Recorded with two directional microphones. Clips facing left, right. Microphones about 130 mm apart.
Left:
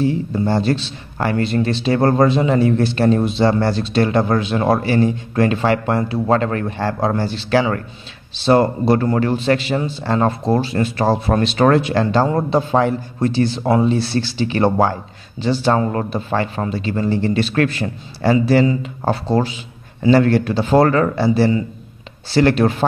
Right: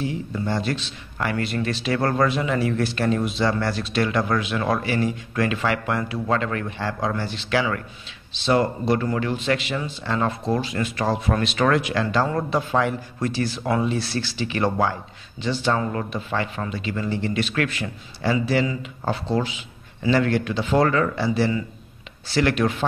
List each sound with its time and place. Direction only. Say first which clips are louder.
0.0 s a man's voice: left 8 dB; 35° left (ahead or behind)